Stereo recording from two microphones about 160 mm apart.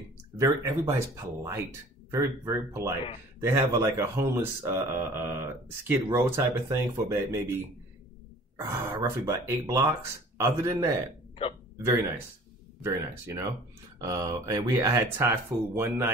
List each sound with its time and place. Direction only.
0.4 s speech: 20° right (ahead or behind)
8.5 s speech: 15° right (ahead or behind)
11.4 s speech: 35° left (ahead or behind)
12.8 s speech: 20° right (ahead or behind)